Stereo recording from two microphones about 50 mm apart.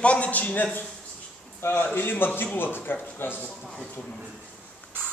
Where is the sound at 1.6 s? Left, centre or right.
Left.